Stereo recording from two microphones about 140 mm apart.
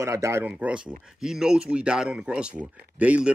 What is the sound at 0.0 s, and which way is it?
Speech, 20° right (ahead or behind).